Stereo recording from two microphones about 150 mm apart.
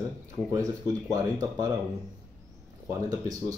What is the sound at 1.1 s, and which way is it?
Speech, 20° right (ahead or behind).